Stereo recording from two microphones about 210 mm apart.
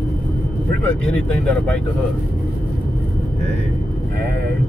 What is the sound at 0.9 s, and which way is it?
Speech, 5° left (ahead or behind).